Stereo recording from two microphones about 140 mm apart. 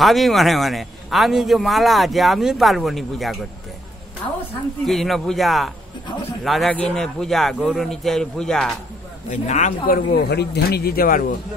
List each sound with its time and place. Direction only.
0.0 s a man's voice: centre (ahead or behind)
4.8 s a man's voice: centre (ahead or behind)
9.3 s speech: 60° left (ahead or behind); by 11.2 s 90° left